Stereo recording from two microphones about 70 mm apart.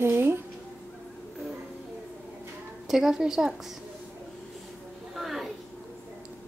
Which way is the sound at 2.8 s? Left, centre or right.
Centre.